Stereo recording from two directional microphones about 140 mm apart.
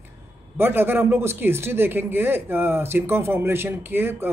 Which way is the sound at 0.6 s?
15° right (ahead or behind).